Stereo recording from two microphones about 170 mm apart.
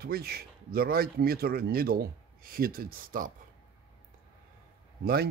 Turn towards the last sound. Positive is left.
turn(degrees=-65)  # may be behind; listen again after turning